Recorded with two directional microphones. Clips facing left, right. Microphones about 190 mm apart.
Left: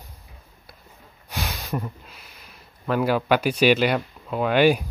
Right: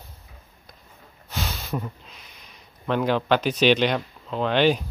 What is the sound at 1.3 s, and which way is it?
Speech, 15° left (ahead or behind).